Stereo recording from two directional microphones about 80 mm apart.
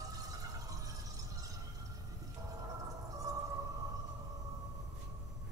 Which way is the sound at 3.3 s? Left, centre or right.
Right.